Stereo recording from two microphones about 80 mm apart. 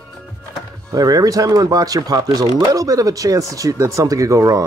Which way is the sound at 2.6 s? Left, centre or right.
Right.